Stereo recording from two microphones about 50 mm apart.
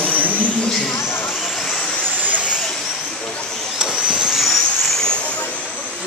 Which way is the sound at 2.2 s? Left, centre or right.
Right.